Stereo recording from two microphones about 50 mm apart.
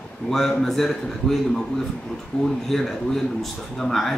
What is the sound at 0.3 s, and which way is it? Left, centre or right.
A man's voice, centre.